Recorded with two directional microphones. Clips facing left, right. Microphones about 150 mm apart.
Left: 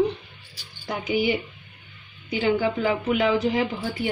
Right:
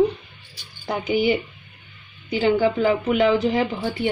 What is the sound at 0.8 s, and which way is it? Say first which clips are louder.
A woman's voice: right 3 dB; 40° right (ahead or behind).